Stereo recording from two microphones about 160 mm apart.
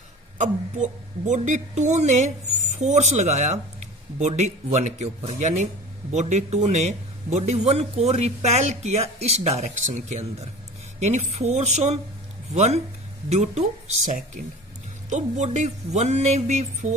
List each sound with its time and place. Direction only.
0.4 s a man's voice: 50° right (ahead or behind)